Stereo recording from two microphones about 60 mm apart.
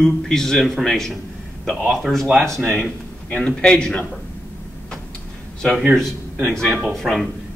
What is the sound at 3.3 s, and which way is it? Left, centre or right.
Speech, centre.